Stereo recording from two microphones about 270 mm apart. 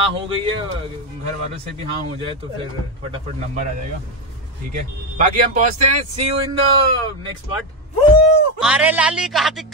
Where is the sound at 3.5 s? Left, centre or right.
Right.